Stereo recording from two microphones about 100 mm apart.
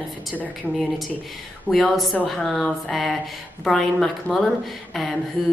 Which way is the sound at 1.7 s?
Centre (ahead or behind).